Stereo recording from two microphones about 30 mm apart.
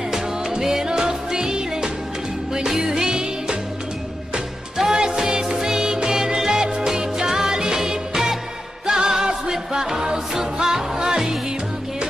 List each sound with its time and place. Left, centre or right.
0.6 s music: centre
4.7 s music: centre